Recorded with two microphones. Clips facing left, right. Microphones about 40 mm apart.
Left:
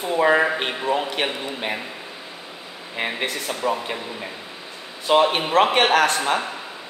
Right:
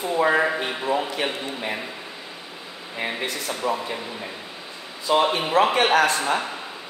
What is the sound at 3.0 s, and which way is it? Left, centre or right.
Speech, left.